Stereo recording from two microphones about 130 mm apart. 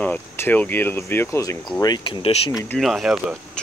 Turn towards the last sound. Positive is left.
turn(degrees=0)  # may be behind; listen again after turning